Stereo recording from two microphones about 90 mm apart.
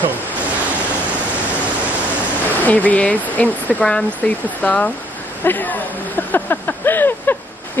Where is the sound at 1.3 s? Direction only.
15° right (ahead or behind).